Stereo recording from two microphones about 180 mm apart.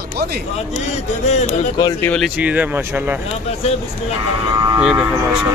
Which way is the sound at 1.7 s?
20° left (ahead or behind).